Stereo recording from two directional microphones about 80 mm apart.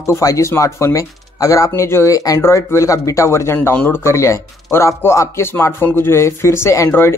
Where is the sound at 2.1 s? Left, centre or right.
Left.